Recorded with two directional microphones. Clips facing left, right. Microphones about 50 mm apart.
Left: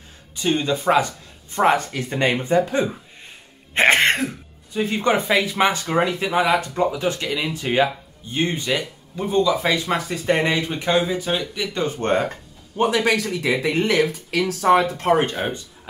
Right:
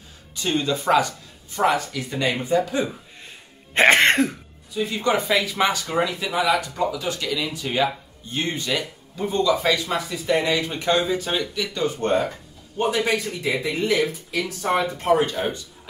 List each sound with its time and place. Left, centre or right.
0.4 s speech: left
1.5 s speech: left
3.7 s throat clearing: centre
4.7 s speech: left
9.9 s speech: left
10.7 s speech: centre
11.7 s speech: left
12.7 s speech: left
15.1 s speech: left